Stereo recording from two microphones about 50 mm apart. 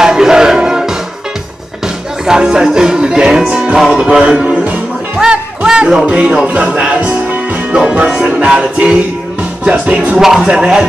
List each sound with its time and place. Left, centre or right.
0.0 s music: centre
2.2 s music: centre
3.9 s speech: centre
5.2 s music: centre
7.7 s music: centre
10.1 s speech: centre